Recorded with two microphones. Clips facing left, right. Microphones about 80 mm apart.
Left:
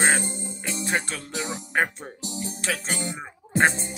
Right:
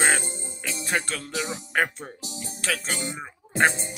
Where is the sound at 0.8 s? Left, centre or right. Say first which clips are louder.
Right 1 dB; left.